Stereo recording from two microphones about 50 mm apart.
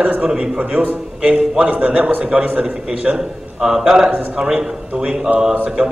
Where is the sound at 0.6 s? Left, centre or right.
Right.